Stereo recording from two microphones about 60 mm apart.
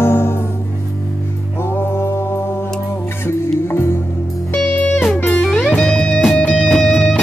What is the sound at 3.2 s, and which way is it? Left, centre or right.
Music, left.